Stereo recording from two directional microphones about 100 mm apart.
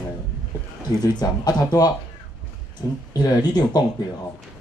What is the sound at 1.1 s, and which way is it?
Speech, 40° left (ahead or behind).